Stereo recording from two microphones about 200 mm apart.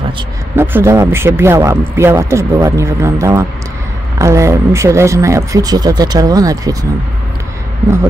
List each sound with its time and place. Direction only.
0.6 s speech: 15° right (ahead or behind)